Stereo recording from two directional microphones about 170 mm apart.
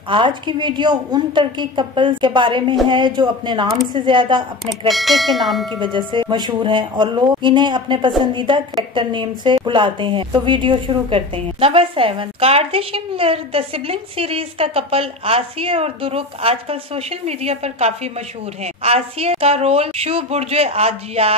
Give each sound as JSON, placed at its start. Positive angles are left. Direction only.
{"t": 0.1, "sound": "a woman's voice", "side_deg": -30}
{"t": 4.8, "sound": "speech", "side_deg": 0}
{"t": 5.8, "sound": "a woman's voice", "side_deg": -30}